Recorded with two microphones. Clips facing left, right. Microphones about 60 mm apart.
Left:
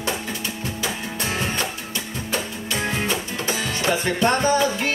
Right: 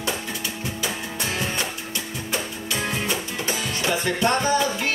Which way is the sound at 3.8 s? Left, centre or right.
Left.